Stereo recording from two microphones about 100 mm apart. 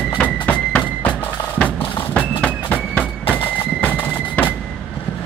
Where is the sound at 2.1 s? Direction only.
15° left (ahead or behind).